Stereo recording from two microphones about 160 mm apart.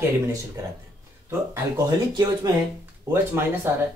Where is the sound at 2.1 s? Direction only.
25° right (ahead or behind).